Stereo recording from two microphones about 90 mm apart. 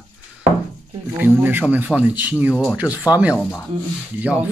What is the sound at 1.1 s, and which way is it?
Speech, 25° right (ahead or behind).